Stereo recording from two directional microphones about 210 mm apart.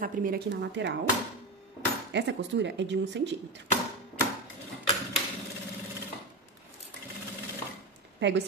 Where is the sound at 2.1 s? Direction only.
55° right (ahead or behind).